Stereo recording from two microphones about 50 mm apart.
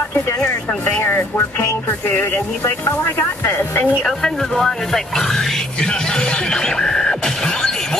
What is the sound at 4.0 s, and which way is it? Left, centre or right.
Speech, centre.